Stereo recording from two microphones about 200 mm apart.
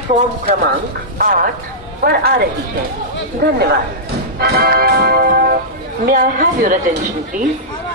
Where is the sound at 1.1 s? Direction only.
45° right (ahead or behind).